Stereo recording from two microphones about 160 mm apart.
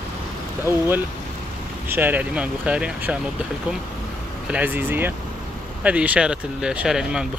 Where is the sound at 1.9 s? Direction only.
10° right (ahead or behind).